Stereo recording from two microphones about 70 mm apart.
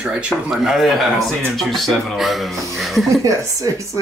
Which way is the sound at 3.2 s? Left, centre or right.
Right.